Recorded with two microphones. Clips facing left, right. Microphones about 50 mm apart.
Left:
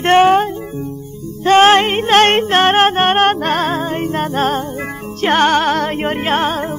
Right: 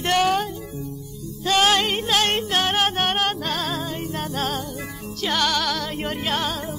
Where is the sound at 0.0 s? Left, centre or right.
Left.